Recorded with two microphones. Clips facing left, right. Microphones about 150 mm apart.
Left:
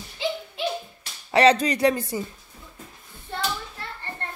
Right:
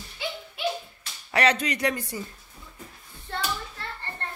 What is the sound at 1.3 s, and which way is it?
Speech, 30° left (ahead or behind).